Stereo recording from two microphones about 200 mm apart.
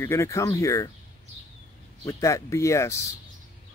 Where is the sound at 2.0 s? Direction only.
15° left (ahead or behind).